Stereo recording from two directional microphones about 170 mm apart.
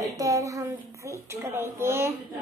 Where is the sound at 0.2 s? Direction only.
20° right (ahead or behind).